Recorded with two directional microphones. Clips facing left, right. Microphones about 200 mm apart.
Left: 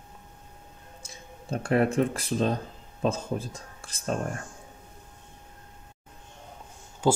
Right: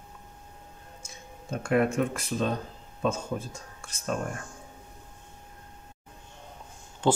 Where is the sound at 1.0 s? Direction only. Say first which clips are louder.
Left 2 dB; 35° left (ahead or behind).